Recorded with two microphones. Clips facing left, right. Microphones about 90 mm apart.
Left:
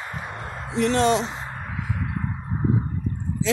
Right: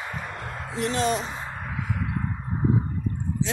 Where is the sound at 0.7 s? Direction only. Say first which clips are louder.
Left 5 dB; 65° left (ahead or behind).